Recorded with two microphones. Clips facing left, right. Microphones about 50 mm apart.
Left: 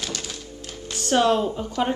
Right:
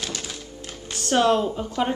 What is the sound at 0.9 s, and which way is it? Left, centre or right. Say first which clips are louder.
Speech: even; centre.